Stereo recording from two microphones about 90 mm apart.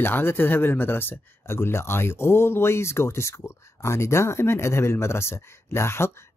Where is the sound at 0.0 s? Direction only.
25° left (ahead or behind).